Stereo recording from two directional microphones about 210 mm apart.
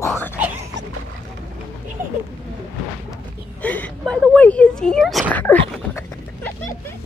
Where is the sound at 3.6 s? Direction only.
5° left (ahead or behind).